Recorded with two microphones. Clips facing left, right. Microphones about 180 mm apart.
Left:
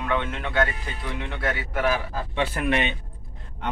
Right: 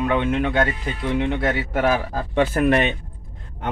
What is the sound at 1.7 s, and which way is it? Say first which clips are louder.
Speech: right 3 dB; 45° right (ahead or behind).